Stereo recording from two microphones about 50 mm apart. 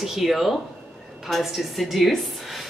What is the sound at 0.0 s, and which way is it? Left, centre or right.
Speech, centre.